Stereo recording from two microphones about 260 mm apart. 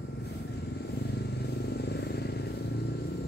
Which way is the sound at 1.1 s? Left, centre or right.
Left.